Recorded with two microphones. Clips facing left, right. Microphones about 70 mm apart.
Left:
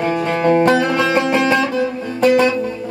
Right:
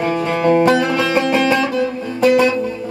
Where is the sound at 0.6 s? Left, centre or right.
Centre.